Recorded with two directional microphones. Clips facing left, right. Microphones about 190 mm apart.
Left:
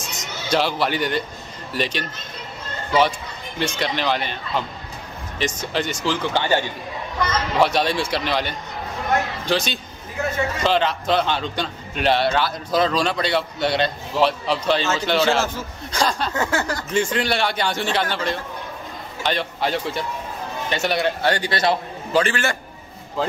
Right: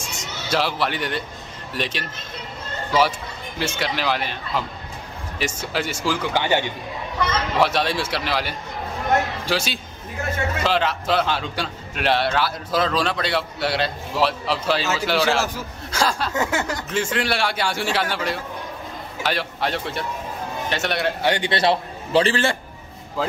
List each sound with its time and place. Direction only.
0.5 s a man's voice: centre (ahead or behind)
3.5 s a man's voice: 5° right (ahead or behind)
7.5 s a man's voice: centre (ahead or behind)
16.3 s a man's voice: 20° right (ahead or behind)
16.9 s a man's voice: 5° right (ahead or behind)
21.2 s a man's voice: 20° right (ahead or behind)